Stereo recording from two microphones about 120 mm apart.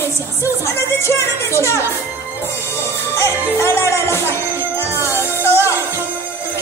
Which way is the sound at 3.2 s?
25° left (ahead or behind).